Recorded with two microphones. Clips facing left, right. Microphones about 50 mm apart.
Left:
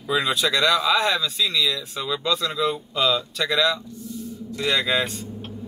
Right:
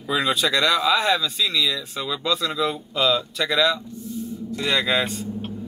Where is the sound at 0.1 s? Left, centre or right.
Centre.